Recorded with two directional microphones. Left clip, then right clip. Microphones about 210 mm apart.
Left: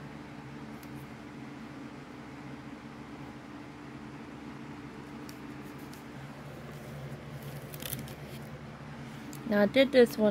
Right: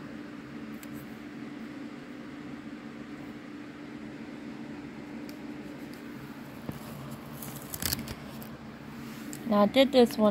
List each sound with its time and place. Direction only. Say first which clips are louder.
9.5 s speech: right 2 dB; 25° left (ahead or behind)